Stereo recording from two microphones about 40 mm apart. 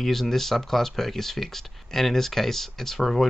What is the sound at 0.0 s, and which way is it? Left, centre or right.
Speech, centre.